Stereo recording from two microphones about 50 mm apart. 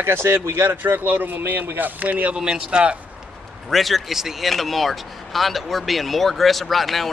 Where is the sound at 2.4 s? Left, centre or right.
Centre.